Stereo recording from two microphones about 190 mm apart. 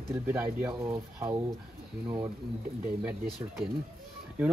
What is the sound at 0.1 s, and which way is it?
Speech, 10° right (ahead or behind).